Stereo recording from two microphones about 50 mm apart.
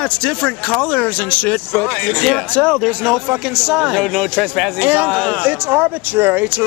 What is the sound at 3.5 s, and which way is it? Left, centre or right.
Speech, centre.